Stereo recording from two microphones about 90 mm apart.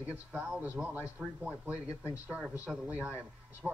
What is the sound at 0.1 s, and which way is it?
Speech, 20° right (ahead or behind).